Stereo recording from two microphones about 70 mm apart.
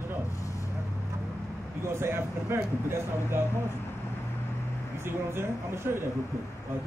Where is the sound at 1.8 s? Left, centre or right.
Right.